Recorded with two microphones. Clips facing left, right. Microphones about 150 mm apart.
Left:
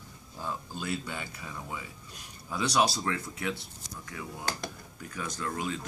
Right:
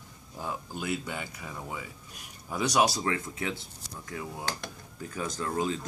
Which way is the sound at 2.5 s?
15° right (ahead or behind).